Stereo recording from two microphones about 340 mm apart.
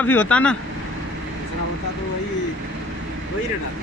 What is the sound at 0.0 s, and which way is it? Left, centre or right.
Speech, centre.